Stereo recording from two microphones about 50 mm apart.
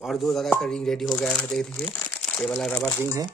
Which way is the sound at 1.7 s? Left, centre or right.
Left.